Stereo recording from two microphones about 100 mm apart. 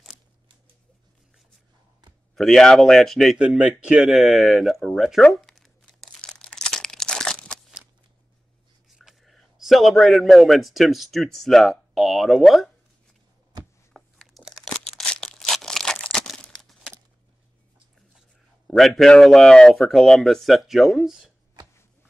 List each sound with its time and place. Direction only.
2.3 s speech: centre (ahead or behind)
3.3 s speech: 10° right (ahead or behind)
5.2 s crumpling: centre (ahead or behind)
8.8 s a man's voice: 5° right (ahead or behind)
13.9 s tearing: 5° left (ahead or behind)
18.8 s speech: centre (ahead or behind)